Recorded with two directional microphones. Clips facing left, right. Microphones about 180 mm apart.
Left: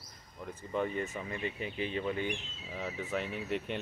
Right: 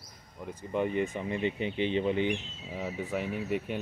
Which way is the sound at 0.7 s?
15° right (ahead or behind).